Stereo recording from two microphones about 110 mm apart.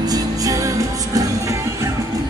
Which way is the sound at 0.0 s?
35° right (ahead or behind).